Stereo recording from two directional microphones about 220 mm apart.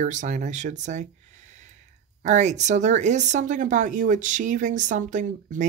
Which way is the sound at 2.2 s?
30° right (ahead or behind).